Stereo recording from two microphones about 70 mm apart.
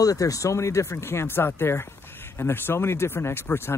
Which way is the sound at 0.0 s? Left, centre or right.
Left.